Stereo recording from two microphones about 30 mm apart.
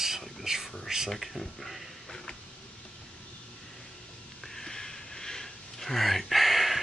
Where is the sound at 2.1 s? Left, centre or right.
Left.